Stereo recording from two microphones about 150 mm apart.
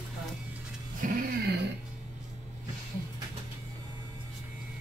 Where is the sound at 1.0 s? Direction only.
75° right (ahead or behind).